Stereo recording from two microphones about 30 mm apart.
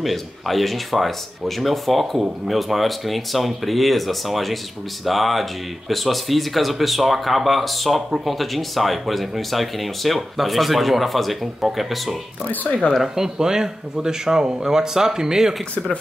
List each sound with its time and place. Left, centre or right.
0.0 s speech: centre
13.0 s speech: centre